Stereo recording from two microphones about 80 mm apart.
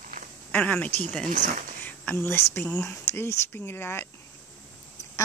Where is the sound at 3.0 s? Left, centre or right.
Left.